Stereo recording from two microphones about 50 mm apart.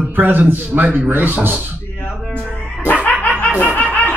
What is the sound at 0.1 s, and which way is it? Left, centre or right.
Speech, right.